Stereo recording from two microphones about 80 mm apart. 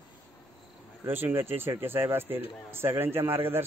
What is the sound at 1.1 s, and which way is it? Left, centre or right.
A man's voice, right.